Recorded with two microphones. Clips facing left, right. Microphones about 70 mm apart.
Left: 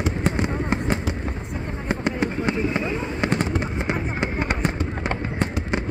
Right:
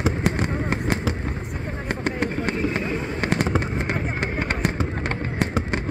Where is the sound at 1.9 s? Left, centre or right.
Right.